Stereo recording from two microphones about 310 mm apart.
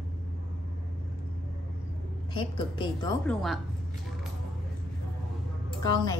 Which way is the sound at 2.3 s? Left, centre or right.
Centre.